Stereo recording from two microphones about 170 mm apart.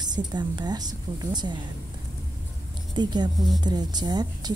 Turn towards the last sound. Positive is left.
turn(degrees=-25)  # may be behind; listen again after turning